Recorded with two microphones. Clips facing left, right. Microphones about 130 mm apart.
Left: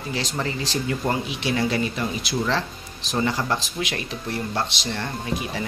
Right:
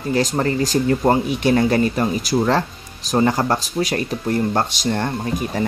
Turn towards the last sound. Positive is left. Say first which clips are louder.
# right 5 dB
turn(degrees=-45)  # may be behind; listen again after turning